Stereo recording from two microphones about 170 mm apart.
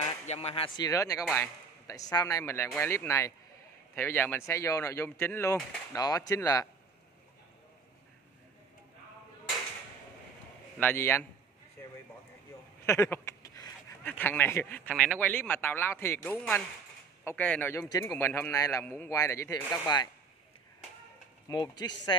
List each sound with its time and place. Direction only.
0.3 s speech: 35° left (ahead or behind)
0.7 s a man's voice: 20° left (ahead or behind)
10.8 s speech: 10° left (ahead or behind)
12.8 s a sound: 15° left (ahead or behind)
14.0 s speech: 10° left (ahead or behind)
21.5 s speech: 25° left (ahead or behind)